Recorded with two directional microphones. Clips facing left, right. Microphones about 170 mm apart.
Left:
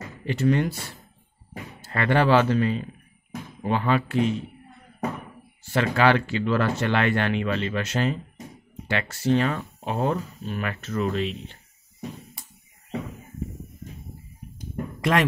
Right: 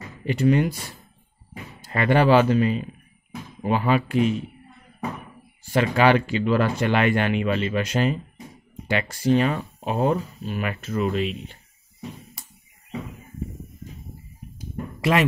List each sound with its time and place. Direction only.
0.2 s speech: 15° right (ahead or behind)
5.6 s speech: 15° right (ahead or behind)
14.6 s a sound: 5° right (ahead or behind)